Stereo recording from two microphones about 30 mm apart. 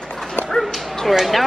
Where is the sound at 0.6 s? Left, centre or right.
Centre.